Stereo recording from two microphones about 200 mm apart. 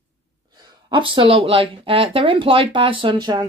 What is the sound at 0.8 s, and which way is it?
Speech, 25° right (ahead or behind).